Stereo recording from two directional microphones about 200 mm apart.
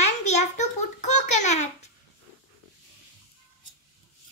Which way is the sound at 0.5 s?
35° left (ahead or behind).